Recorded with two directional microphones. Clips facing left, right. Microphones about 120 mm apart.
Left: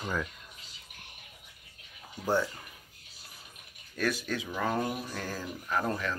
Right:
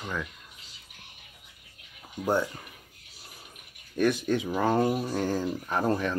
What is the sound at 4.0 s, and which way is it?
Speech, 25° right (ahead or behind).